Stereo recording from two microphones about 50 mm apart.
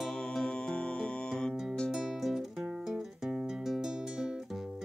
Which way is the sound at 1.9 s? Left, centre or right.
Centre.